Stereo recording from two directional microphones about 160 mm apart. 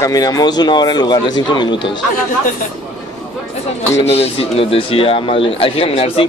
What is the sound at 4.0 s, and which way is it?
Speech, 40° left (ahead or behind).